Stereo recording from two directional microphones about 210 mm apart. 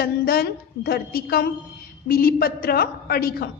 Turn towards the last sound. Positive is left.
turn(degrees=45)  # may be behind; listen again after turning